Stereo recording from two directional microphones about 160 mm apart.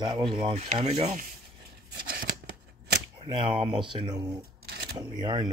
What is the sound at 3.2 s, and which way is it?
Speech, 30° right (ahead or behind).